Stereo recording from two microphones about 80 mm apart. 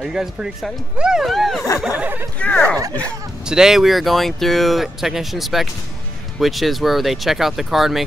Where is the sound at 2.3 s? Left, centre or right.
Centre.